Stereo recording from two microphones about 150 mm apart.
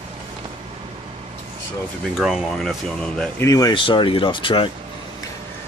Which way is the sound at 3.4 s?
25° left (ahead or behind).